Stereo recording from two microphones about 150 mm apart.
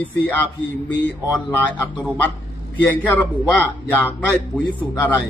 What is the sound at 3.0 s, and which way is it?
Speech, 10° left (ahead or behind).